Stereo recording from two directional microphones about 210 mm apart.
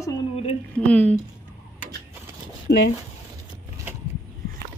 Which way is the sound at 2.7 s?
55° left (ahead or behind).